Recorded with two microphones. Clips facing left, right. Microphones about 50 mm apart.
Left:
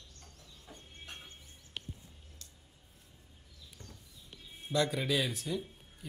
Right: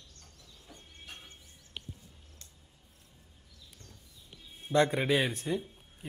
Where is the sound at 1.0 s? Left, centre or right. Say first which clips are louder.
Even; left.